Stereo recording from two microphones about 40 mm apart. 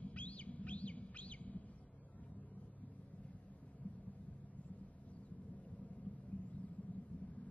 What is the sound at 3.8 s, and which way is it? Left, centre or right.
Vehicle, left.